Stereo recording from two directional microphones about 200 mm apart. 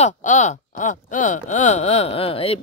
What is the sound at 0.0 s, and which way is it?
Speech, 35° left (ahead or behind).